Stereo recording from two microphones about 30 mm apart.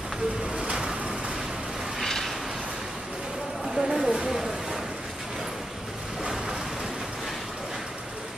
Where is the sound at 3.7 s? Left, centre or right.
Centre.